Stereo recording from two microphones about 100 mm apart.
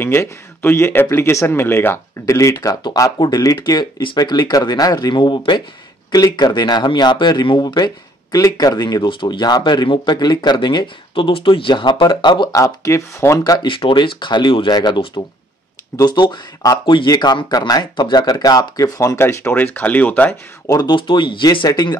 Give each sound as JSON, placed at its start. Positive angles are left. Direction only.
{"t": 0.0, "sound": "speech", "side_deg": 25}
{"t": 2.6, "sound": "speech", "side_deg": 40}
{"t": 12.5, "sound": "speech", "side_deg": 35}
{"t": 13.4, "sound": "speech", "side_deg": 45}
{"t": 20.6, "sound": "speech", "side_deg": 35}
{"t": 20.9, "sound": "speech", "side_deg": 50}